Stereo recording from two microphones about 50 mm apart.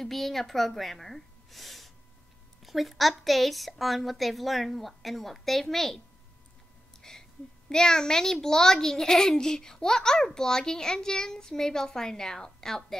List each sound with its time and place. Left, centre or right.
0.0 s a woman's voice: centre
7.0 s a sound: centre
7.7 s a child's voice: centre